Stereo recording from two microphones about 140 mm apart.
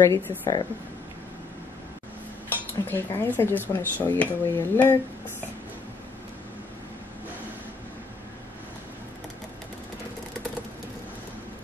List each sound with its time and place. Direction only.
0.0 s speech: 20° left (ahead or behind)
2.9 s speech: 15° left (ahead or behind)